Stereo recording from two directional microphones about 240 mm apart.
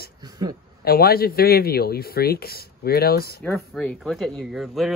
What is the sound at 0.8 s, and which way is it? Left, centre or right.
Speech, left.